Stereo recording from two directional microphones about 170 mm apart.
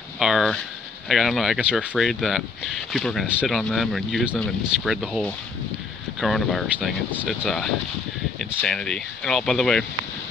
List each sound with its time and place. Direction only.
0.2 s speech: centre (ahead or behind)